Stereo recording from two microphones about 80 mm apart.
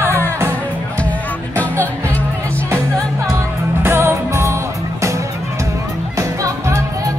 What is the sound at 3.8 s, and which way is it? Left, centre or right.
Music, right.